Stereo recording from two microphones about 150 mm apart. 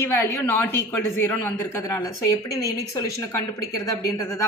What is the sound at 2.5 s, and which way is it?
Speech, 20° left (ahead or behind).